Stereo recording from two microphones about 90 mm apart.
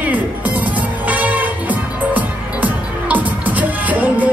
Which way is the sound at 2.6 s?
20° right (ahead or behind).